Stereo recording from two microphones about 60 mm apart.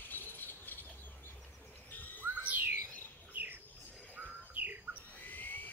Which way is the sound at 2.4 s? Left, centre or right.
Right.